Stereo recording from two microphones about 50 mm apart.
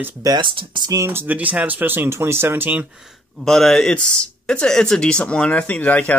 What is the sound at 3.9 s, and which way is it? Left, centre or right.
Speech, left.